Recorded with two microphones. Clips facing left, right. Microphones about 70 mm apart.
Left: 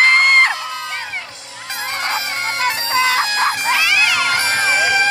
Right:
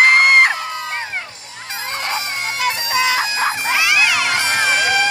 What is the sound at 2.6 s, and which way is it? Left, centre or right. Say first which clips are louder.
Music: left 1 dB; left.